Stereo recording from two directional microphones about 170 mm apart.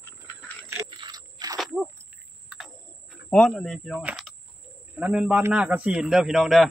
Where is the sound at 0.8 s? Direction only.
30° right (ahead or behind).